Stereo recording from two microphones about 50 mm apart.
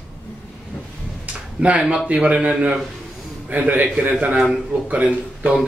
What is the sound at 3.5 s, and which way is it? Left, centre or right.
A man's voice, right.